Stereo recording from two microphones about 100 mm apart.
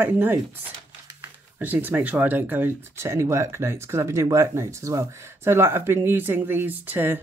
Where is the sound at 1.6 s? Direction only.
15° right (ahead or behind).